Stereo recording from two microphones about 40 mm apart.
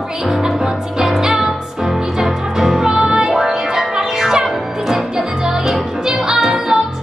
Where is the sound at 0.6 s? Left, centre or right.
Centre.